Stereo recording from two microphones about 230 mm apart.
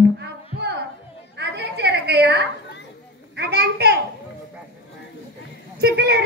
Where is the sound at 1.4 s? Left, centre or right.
Right.